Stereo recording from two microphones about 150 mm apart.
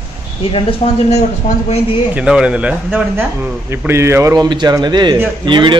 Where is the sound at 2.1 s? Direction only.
5° right (ahead or behind).